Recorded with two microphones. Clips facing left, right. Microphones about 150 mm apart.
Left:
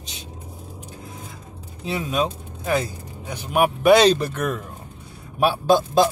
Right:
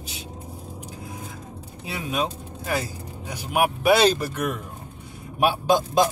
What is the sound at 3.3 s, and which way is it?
Speech, 10° right (ahead or behind).